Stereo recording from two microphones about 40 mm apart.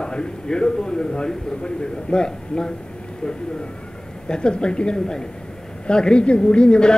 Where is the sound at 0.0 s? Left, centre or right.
Left.